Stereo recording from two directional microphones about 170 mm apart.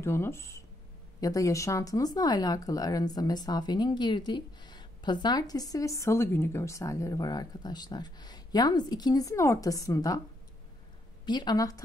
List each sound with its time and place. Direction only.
0.0 s speech: 15° left (ahead or behind)
11.2 s speech: 25° left (ahead or behind)